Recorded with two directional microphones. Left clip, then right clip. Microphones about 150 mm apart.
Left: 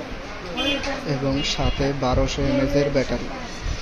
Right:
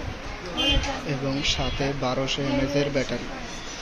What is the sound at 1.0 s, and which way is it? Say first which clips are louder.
Speech: left 2 dB; 20° left (ahead or behind).